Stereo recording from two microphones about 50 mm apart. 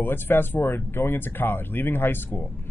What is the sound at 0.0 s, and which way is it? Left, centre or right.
Speech, left.